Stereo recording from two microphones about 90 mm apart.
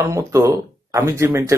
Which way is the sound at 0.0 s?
35° right (ahead or behind).